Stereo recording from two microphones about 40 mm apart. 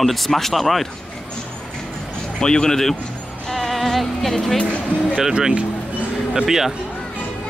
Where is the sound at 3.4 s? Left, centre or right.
Centre.